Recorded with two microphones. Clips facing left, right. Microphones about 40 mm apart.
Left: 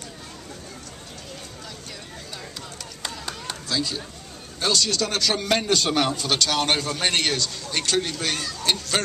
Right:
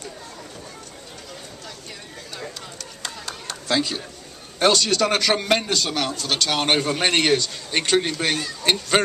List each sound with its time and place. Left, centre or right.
3.0 s chop: centre
3.6 s speech: right
5.4 s a man's voice: centre
5.7 s a man's voice: centre
6.2 s speech: centre
6.5 s a man's voice: right